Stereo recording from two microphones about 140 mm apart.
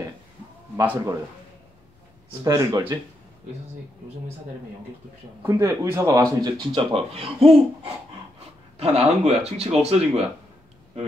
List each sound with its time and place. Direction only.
0.8 s speech: 20° right (ahead or behind)
2.4 s speech: 25° right (ahead or behind)
5.4 s speech: 20° right (ahead or behind)
6.4 s speech: 35° right (ahead or behind)